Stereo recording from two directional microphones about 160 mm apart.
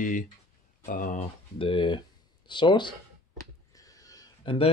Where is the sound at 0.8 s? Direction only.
55° left (ahead or behind).